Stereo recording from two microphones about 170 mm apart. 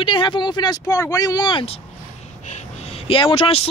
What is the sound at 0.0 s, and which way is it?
Speech, 30° left (ahead or behind).